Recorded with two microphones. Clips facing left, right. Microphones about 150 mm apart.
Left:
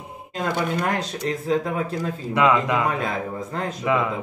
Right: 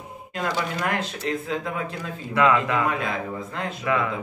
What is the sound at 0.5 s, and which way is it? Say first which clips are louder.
Speech: left 4 dB; 55° left (ahead or behind).